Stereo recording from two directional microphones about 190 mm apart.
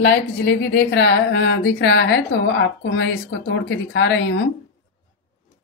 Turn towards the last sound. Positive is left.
turn(degrees=75)  # may be behind; listen again after turning